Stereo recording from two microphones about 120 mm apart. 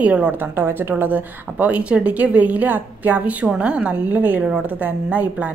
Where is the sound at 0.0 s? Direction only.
10° right (ahead or behind).